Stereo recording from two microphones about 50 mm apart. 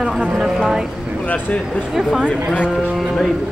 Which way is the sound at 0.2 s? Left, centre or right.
Right.